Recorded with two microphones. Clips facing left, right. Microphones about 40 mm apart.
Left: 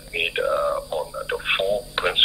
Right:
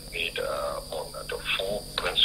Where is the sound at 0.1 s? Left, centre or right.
Left.